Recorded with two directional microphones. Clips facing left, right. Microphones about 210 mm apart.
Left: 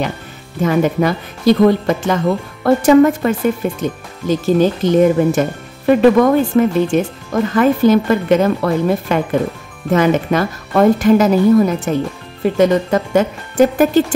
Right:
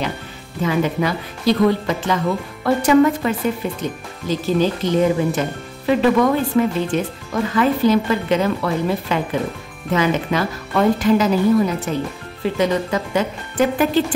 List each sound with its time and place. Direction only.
0.6 s speech: 50° left (ahead or behind)